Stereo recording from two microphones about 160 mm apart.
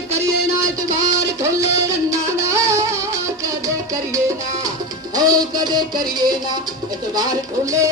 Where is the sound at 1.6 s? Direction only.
20° right (ahead or behind).